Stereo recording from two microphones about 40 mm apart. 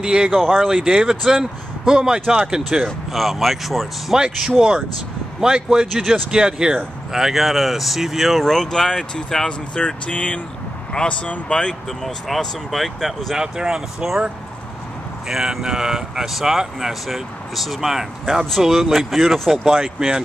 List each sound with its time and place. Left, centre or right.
0.0 s speech: centre
0.3 s speech: centre
0.7 s speech: centre
2.8 s speech: centre
5.4 s speech: centre
7.1 s speech: centre
8.5 s speech: centre
9.5 s speech: left
10.9 s speech: left
12.0 s speech: centre
13.4 s speech: centre
15.2 s speech: centre
19.6 s speech: centre